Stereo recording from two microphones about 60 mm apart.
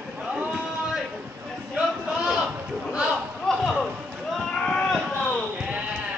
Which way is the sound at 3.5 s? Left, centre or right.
Centre.